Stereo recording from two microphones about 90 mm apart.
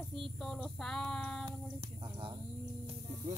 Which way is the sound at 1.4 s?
65° right (ahead or behind).